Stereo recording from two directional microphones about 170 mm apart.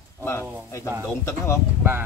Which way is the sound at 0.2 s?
15° left (ahead or behind).